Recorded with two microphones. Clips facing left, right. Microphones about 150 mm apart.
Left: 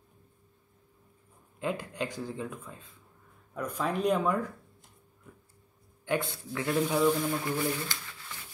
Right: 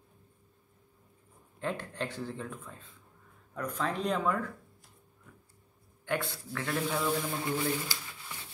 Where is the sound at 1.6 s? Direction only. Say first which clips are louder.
Left 2 dB; 10° left (ahead or behind).